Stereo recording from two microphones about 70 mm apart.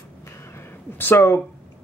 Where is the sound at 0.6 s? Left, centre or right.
Left.